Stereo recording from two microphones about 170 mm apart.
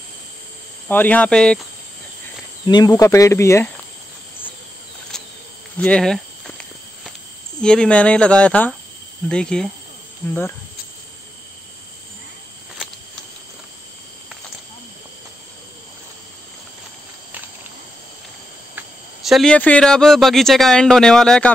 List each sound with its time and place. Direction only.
0.8 s speech: 10° left (ahead or behind)
2.6 s speech: 25° left (ahead or behind)
5.1 s insect: 5° left (ahead or behind)
5.8 s cricket: 5° left (ahead or behind)
7.6 s speech: 5° left (ahead or behind)
18.8 s speech: centre (ahead or behind)